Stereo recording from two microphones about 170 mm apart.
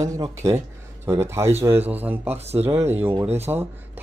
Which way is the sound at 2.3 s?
40° right (ahead or behind).